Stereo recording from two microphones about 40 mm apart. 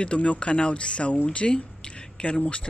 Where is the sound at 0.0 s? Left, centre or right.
Left.